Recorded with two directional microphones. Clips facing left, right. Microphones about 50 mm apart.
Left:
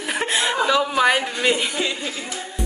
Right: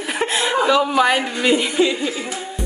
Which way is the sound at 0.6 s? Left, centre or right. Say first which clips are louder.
Right 2 dB; centre.